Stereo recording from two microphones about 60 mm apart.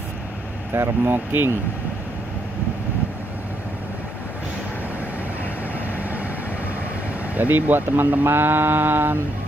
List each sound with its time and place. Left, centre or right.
0.7 s speech: right
7.3 s speech: right